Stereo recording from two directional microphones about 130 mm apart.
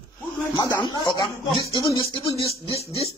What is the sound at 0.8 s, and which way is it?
Speech, 35° left (ahead or behind).